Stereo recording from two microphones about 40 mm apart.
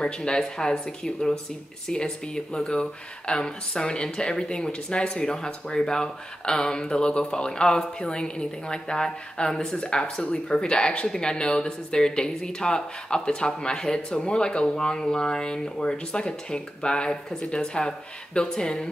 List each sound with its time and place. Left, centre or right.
0.0 s speech: left